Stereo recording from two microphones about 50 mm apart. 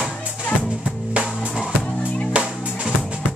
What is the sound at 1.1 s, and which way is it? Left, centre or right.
Music, centre.